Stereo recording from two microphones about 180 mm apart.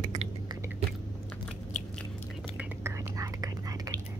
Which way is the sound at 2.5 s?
15° right (ahead or behind).